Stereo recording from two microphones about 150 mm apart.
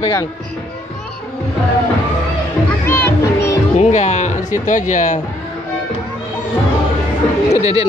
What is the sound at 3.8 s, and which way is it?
Speech, 50° left (ahead or behind).